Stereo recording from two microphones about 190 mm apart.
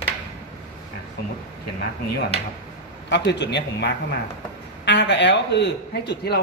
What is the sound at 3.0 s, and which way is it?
Speech, 65° left (ahead or behind).